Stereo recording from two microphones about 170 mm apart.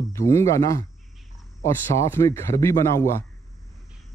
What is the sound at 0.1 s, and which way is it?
Speech, 15° left (ahead or behind).